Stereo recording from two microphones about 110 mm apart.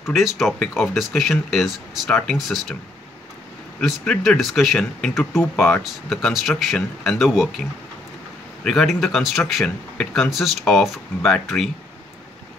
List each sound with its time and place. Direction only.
0.0 s speech: centre (ahead or behind)
3.8 s speech: 5° left (ahead or behind)
8.6 s speech: centre (ahead or behind)